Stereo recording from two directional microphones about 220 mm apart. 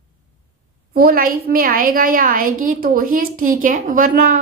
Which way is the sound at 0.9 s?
40° right (ahead or behind).